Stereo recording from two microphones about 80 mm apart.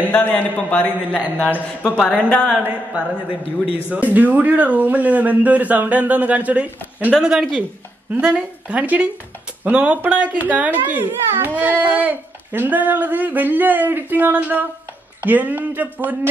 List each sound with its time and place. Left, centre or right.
0.1 s a man's voice: centre
2.6 s a child's voice: centre
8.1 s a child's voice: centre